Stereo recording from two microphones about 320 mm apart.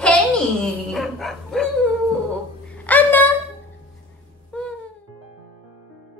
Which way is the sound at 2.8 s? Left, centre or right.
Centre.